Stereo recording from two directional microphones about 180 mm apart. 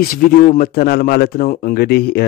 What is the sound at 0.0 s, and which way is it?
Speech, 50° left (ahead or behind).